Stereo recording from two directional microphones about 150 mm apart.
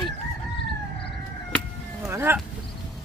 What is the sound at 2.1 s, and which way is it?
Speech, 15° right (ahead or behind).